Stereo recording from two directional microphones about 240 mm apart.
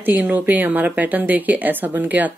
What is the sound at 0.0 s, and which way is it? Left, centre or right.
A woman's voice, centre.